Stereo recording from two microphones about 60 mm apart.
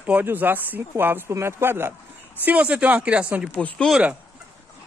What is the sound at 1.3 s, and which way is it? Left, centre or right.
Speech, right.